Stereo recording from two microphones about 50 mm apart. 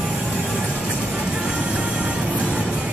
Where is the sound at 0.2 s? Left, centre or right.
Right.